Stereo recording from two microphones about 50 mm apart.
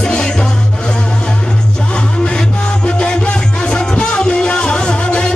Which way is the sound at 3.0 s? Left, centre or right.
Centre.